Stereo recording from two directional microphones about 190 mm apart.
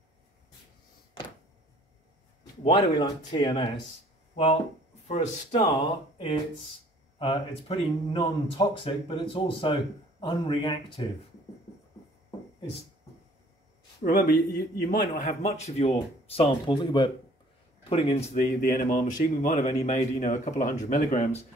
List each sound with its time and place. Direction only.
2.7 s speech: 25° left (ahead or behind)
5.0 s speech: 35° left (ahead or behind)
14.0 s a man's voice: 55° left (ahead or behind); by 21.4 s 40° left (ahead or behind)